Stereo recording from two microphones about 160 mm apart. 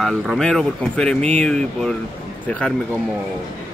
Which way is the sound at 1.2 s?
45° right (ahead or behind).